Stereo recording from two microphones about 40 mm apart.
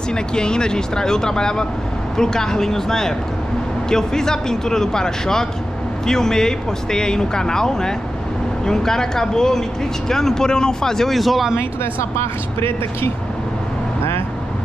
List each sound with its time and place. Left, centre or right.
0.1 s speech: centre
11.1 s speech: centre